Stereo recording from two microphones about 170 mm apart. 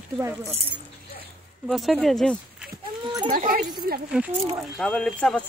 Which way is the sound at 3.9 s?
60° right (ahead or behind).